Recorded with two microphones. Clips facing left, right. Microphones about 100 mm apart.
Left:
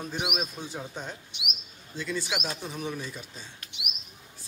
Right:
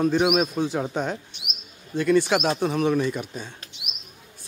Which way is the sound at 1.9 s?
60° right (ahead or behind).